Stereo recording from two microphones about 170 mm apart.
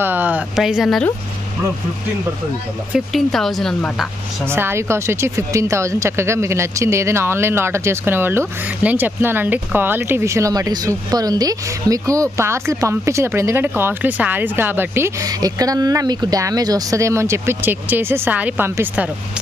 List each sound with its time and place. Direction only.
0.0 s speech: 10° right (ahead or behind)
2.9 s speech: centre (ahead or behind)
4.5 s speech: 15° right (ahead or behind)